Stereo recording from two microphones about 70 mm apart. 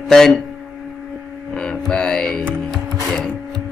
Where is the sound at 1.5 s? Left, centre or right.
Centre.